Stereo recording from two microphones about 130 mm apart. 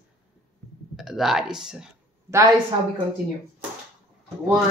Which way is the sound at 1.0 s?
Centre (ahead or behind).